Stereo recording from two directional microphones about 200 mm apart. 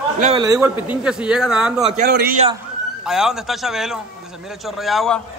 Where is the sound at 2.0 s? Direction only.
50° right (ahead or behind).